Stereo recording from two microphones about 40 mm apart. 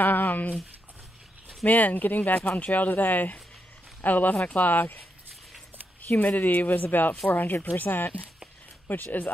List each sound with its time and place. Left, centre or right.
0.0 s a sound: left
1.7 s speech: left
6.0 s speech: left